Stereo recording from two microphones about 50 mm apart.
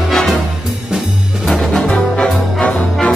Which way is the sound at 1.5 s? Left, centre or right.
Centre.